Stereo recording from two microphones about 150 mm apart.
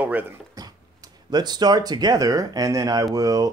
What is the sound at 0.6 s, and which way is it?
Speech, 25° right (ahead or behind).